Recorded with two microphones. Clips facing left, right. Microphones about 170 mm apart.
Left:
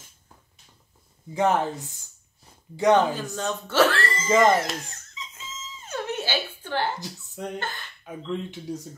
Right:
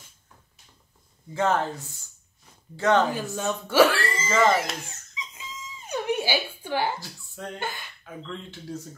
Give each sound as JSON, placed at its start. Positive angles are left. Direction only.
{"t": 1.3, "sound": "speech", "side_deg": 15}
{"t": 3.2, "sound": "speech", "side_deg": -10}
{"t": 4.3, "sound": "speech", "side_deg": 15}
{"t": 5.9, "sound": "a sound", "side_deg": -10}
{"t": 7.0, "sound": "speech", "side_deg": 20}
{"t": 7.5, "sound": "speech", "side_deg": -10}
{"t": 8.0, "sound": "speech", "side_deg": 15}